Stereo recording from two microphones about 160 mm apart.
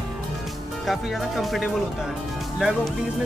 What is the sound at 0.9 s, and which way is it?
Speech, centre (ahead or behind).